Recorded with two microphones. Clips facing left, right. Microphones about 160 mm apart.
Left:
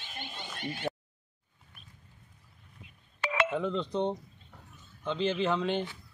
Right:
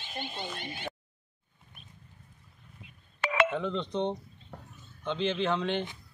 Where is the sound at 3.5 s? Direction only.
5° left (ahead or behind).